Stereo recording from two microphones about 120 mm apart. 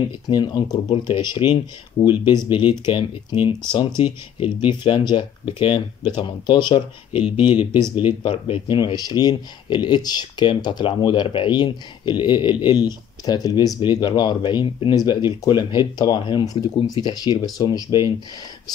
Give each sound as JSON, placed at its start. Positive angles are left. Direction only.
{"t": 0.3, "sound": "speech", "side_deg": 35}
{"t": 7.2, "sound": "speech", "side_deg": -10}
{"t": 8.2, "sound": "speech", "side_deg": 45}